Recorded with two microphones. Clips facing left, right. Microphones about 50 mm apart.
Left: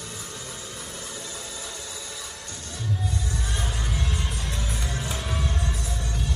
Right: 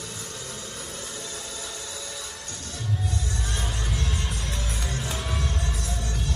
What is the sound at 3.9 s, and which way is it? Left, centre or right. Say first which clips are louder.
Music: even; centre.